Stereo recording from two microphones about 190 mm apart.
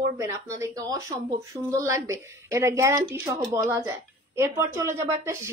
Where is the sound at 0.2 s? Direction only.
15° right (ahead or behind).